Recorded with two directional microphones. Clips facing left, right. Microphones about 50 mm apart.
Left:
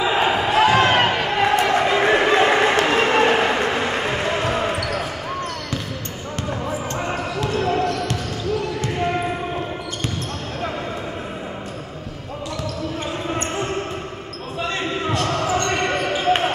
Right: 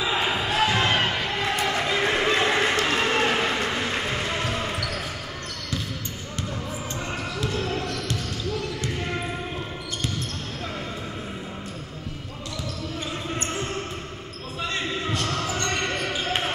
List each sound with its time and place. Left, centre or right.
0.0 s basketball bounce: left
2.6 s a sound: left
3.1 s vehicle: left
3.6 s train: left
4.5 s basketball bounce: left
14.7 s basketball bounce: left